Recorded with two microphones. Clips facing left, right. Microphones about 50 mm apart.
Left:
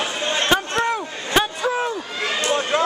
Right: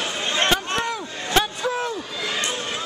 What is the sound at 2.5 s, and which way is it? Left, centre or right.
Run, left.